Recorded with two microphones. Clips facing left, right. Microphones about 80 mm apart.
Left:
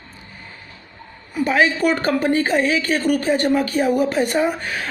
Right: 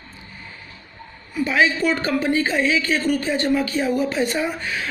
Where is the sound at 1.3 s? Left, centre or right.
Left.